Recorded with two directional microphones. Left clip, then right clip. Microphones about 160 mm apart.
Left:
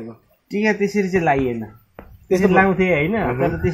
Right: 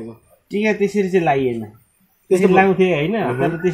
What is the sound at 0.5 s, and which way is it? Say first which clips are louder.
Speech: right 1 dB; 10° right (ahead or behind).